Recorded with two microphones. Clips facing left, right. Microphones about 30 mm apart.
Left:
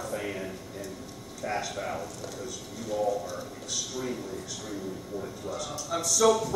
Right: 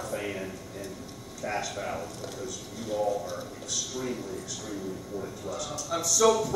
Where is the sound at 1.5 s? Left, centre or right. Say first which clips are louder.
Even; centre.